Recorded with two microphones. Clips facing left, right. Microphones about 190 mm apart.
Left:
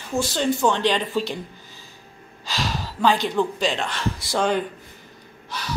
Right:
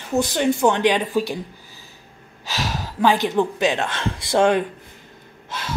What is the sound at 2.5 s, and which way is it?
Speech, 15° right (ahead or behind).